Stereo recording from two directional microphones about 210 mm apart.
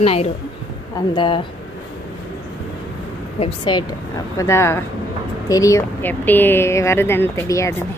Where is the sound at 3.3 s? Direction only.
25° left (ahead or behind).